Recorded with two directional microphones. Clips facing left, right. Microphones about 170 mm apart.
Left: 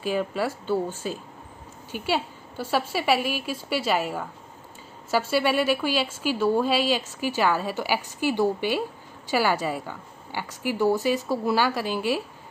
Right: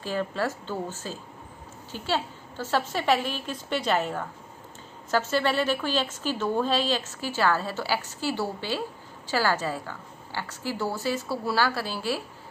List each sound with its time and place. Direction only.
0.0 s a woman's voice: 10° left (ahead or behind)